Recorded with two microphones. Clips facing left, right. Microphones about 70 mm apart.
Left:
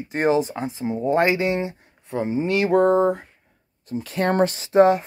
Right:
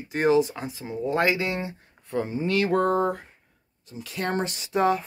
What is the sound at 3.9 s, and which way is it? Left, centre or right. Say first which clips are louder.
Speech: left 7 dB; left.